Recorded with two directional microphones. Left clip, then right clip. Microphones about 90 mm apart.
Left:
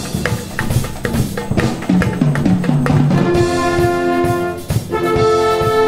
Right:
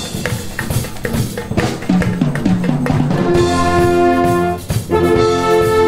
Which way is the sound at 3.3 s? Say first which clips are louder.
Right 3 dB; centre (ahead or behind).